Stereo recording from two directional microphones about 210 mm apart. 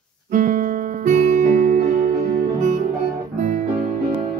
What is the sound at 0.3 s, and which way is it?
Music, 40° right (ahead or behind).